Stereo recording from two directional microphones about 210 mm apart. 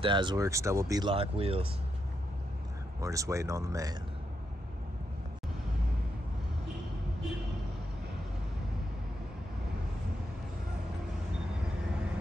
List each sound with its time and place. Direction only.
0.0 s speech: 20° right (ahead or behind)
3.0 s speech: 15° right (ahead or behind)